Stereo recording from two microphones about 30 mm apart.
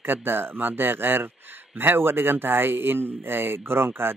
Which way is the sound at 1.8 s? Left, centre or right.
Right.